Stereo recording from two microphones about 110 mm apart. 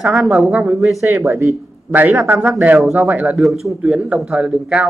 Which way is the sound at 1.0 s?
20° right (ahead or behind).